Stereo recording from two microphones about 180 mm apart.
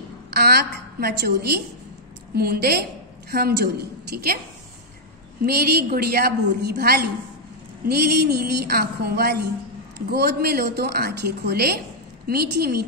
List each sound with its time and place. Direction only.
0.3 s a woman's voice: 65° right (ahead or behind)
5.4 s a woman's voice: 60° right (ahead or behind)